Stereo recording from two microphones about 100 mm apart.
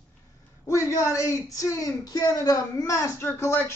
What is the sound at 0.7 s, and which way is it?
Speech, 30° left (ahead or behind).